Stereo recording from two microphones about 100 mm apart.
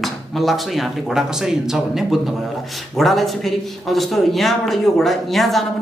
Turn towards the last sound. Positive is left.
turn(degrees=0)  # may be behind; listen again after turning